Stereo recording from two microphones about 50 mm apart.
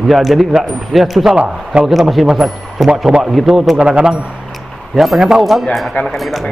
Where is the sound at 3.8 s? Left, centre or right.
Centre.